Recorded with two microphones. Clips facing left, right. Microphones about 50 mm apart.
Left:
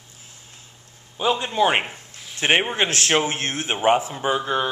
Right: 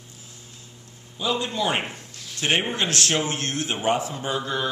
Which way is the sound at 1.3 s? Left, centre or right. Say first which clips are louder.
Left 4 dB; left.